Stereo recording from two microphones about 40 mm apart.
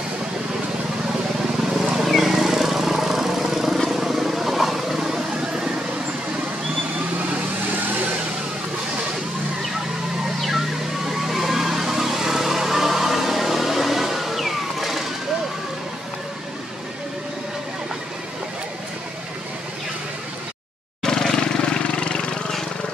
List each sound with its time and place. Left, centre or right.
1.6 s vehicle: centre
2.0 s wild animals: centre
2.3 s vehicle: centre
7.2 s vehicle: right
11.1 s vehicle: centre
21.0 s vehicle: centre